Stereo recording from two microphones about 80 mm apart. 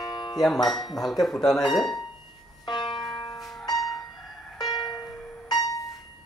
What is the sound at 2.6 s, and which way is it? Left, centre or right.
Music, left.